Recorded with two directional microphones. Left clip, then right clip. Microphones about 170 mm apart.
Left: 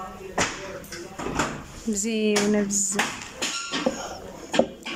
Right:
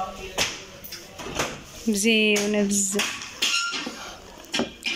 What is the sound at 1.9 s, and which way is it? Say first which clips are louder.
Speech: right 4 dB; centre (ahead or behind).